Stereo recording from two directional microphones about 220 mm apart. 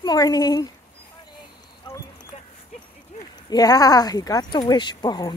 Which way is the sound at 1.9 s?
20° left (ahead or behind).